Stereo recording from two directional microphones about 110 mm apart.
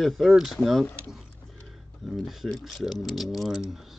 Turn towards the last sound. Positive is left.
turn(degrees=-5)  # may be behind; listen again after turning